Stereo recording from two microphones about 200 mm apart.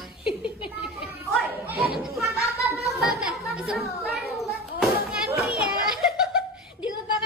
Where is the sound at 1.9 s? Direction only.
Centre (ahead or behind).